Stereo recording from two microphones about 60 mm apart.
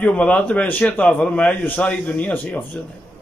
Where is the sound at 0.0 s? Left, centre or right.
Left.